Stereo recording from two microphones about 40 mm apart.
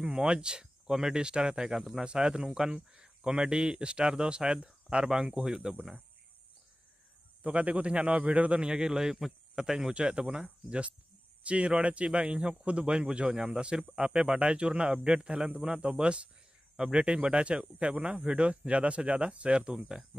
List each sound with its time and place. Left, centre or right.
0.0 s speech: right
7.4 s a man's voice: right
8.6 s speech: centre
9.9 s speech: right
11.4 s speech: right